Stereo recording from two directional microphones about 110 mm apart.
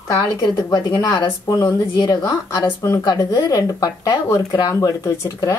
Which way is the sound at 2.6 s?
25° left (ahead or behind).